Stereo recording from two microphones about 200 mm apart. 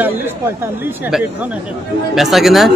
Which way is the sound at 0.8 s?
10° right (ahead or behind).